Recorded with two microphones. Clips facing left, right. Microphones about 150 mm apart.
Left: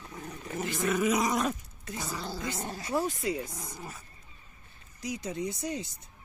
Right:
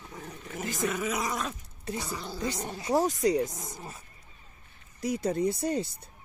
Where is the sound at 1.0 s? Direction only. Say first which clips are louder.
Left 4 dB; 15° left (ahead or behind).